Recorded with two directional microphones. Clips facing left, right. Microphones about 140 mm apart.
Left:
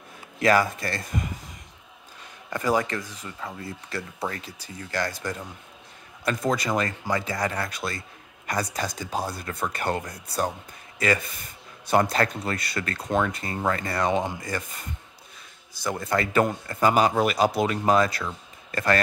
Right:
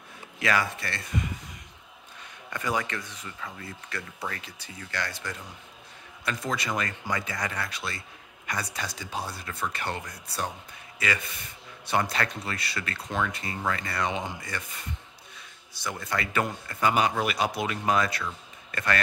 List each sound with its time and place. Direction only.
0.4 s speech: 40° left (ahead or behind)
2.5 s speech: 35° left (ahead or behind)
15.8 s speech: 40° left (ahead or behind)